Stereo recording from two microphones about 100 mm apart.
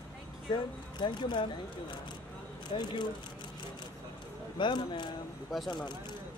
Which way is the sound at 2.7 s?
60° left (ahead or behind).